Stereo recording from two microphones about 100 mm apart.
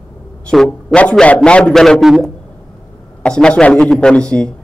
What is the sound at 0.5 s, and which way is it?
Speech, 10° left (ahead or behind).